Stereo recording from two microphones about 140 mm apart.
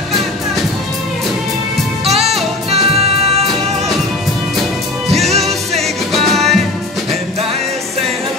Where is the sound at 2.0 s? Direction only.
50° right (ahead or behind).